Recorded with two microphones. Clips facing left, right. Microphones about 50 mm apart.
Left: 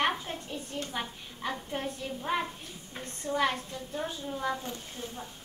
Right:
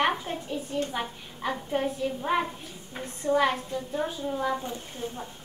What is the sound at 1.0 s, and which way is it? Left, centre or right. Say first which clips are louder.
A woman's voice: right 4 dB; centre.